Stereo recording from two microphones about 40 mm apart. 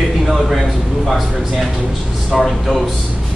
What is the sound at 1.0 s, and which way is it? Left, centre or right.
Speech, centre.